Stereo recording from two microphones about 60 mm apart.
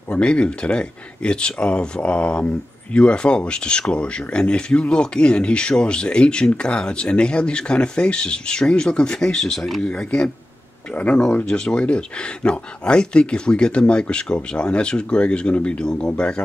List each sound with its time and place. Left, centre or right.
0.1 s speech: centre
9.8 s speech: centre